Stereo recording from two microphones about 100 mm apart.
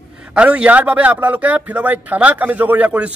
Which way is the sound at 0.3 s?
10° right (ahead or behind).